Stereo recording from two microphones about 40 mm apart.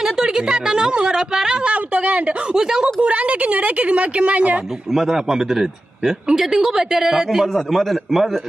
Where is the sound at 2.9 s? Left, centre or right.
Right.